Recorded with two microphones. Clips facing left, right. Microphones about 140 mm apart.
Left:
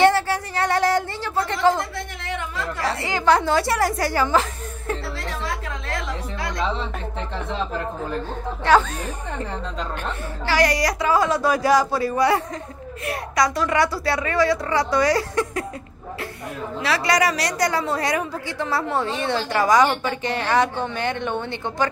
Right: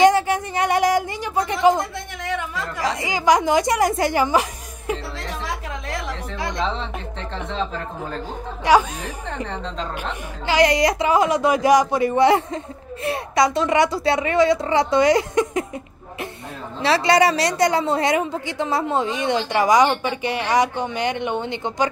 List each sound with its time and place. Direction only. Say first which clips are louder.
0.0 s a sound: right 2 dB; 15° right (ahead or behind)
2.8 s a woman's voice: right 1 dB; 15° right (ahead or behind)
5.4 s a sound: even; 15° right (ahead or behind)
6.6 s speech: left 2 dB; 5° left (ahead or behind)
8.6 s a woman's voice: right 1 dB; 15° right (ahead or behind)
9.5 s speech: right 1 dB; 5° left (ahead or behind)
10.4 s a woman's voice: right 3 dB; 20° right (ahead or behind)
16.8 s a woman's voice: right 4 dB; 25° right (ahead or behind)